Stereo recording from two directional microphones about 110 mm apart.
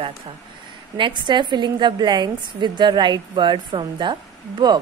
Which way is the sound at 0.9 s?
45° right (ahead or behind).